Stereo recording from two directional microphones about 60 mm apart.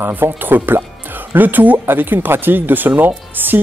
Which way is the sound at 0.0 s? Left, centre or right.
Right.